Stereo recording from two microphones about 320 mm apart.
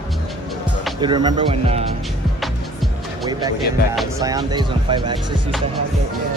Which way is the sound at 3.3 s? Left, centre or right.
Centre.